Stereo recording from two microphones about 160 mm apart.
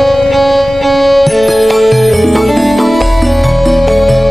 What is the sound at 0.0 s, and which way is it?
Music, centre (ahead or behind).